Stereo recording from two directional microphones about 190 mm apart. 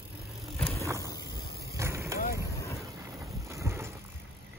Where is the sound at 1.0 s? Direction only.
20° left (ahead or behind).